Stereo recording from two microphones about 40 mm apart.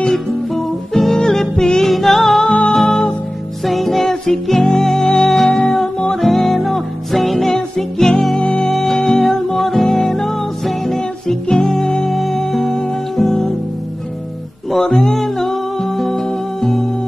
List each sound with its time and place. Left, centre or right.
0.9 s music: centre
2.4 s music: left
2.7 s music: centre
7.5 s music: centre
8.6 s music: centre
11.0 s music: centre
15.0 s music: centre